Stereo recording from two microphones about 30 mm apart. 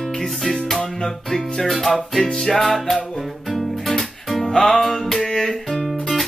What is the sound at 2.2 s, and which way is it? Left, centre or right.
Music, left.